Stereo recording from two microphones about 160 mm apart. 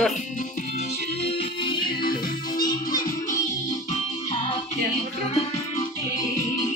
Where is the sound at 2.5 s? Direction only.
60° left (ahead or behind).